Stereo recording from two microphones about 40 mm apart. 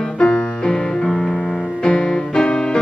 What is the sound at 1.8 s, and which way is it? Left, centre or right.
Music, left.